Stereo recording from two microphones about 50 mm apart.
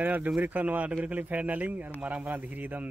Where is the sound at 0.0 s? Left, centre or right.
Right.